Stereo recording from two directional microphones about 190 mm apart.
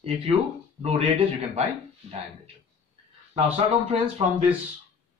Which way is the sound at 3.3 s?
35° right (ahead or behind).